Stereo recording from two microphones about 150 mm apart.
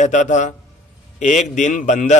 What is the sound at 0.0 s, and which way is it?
A man's voice, 55° left (ahead or behind).